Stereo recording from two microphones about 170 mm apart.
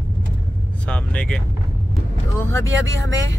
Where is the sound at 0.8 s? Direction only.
5° left (ahead or behind).